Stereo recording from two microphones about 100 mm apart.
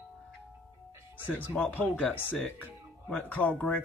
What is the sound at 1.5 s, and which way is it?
Speech, 15° left (ahead or behind).